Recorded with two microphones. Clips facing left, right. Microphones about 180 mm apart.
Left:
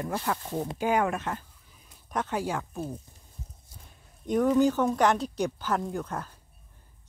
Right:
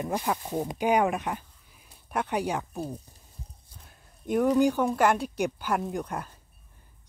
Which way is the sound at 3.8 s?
5° right (ahead or behind).